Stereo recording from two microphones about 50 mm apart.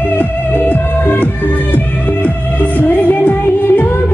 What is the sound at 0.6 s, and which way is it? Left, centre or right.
Music, left.